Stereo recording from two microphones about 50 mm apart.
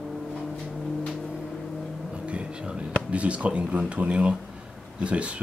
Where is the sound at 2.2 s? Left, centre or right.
Right.